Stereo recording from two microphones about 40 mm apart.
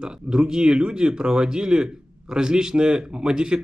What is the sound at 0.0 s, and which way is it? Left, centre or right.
Speech, centre.